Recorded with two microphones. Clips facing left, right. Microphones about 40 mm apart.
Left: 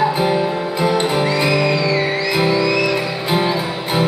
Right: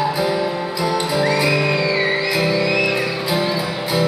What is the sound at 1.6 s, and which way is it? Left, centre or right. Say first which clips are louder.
Music: left 1 dB; centre.